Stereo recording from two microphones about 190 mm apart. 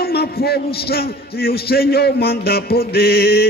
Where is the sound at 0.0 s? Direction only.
55° left (ahead or behind).